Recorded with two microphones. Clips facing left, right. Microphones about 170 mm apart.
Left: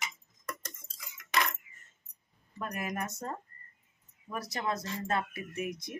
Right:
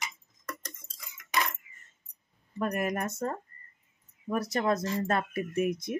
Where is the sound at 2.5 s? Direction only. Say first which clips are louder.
Right 7 dB; 55° right (ahead or behind).